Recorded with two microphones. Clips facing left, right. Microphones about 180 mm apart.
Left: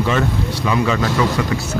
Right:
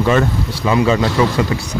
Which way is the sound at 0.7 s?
25° right (ahead or behind).